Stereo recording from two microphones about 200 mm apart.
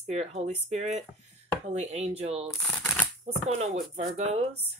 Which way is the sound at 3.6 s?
35° right (ahead or behind).